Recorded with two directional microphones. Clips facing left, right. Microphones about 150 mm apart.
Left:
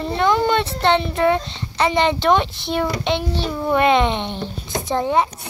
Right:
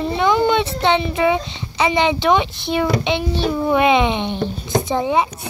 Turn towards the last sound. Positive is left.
turn(degrees=-5)  # may be behind; listen again after turning